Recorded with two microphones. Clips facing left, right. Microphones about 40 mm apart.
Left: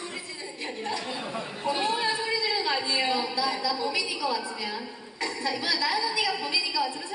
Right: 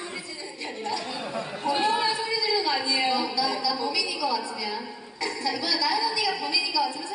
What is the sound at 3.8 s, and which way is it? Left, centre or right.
A woman's voice, left.